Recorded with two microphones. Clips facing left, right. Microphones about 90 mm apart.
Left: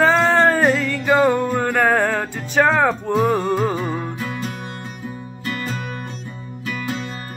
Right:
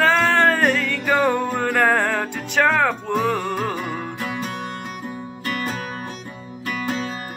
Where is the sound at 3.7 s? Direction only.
15° left (ahead or behind).